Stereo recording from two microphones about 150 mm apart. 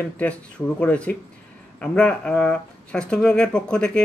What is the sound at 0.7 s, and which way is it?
Speech, 10° left (ahead or behind).